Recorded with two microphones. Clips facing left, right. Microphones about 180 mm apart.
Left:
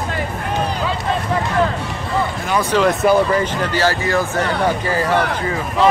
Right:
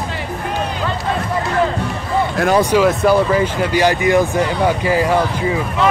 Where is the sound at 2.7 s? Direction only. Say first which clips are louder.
Left 3 dB; 5° right (ahead or behind).